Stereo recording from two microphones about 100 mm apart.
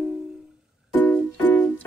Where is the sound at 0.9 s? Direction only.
20° left (ahead or behind).